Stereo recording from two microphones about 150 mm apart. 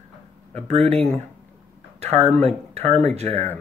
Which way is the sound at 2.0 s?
45° right (ahead or behind).